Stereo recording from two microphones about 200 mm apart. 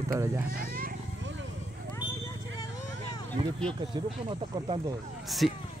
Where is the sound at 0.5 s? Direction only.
45° right (ahead or behind).